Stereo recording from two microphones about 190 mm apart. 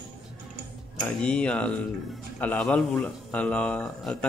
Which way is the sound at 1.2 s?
5° left (ahead or behind).